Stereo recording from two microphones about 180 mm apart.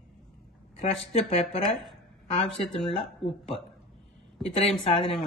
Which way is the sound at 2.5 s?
Centre (ahead or behind).